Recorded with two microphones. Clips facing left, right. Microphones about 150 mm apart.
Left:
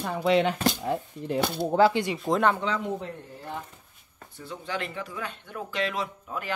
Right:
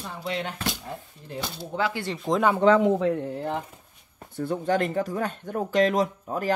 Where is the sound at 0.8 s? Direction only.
70° left (ahead or behind).